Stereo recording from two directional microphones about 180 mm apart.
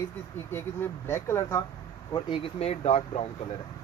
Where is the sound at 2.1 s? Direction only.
30° left (ahead or behind).